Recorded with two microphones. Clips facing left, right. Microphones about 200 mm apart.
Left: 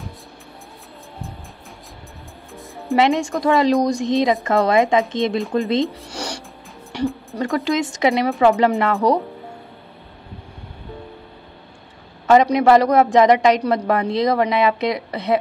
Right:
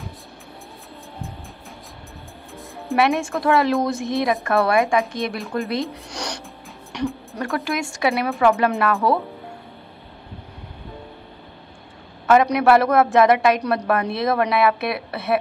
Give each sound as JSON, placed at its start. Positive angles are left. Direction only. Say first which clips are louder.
{"t": 3.0, "sound": "speech", "louder": "left 2 dB", "side_deg": 15}
{"t": 5.9, "sound": "a sound", "louder": "left 2 dB", "side_deg": 10}
{"t": 7.0, "sound": "speech", "louder": "left 3 dB", "side_deg": 10}
{"t": 12.3, "sound": "speech", "louder": "left 2 dB", "side_deg": 15}